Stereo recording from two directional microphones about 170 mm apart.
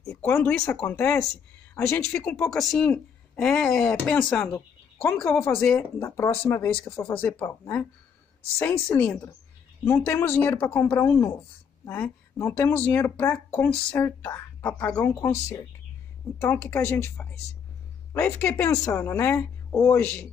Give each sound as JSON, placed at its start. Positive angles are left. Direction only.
{"t": 0.0, "sound": "speech", "side_deg": 5}
{"t": 4.5, "sound": "a sound", "side_deg": 15}
{"t": 5.1, "sound": "speech", "side_deg": 10}